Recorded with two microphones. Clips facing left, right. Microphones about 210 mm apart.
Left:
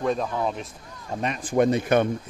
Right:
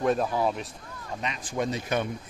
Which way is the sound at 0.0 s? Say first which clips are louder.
Even; 5° right (ahead or behind).